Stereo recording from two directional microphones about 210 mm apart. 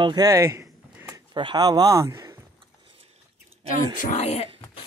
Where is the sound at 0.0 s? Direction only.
20° right (ahead or behind).